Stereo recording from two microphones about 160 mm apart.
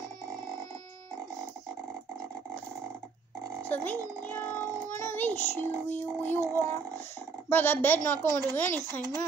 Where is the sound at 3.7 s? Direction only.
10° left (ahead or behind).